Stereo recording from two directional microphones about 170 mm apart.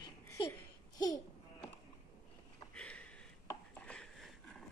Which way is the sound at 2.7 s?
5° left (ahead or behind).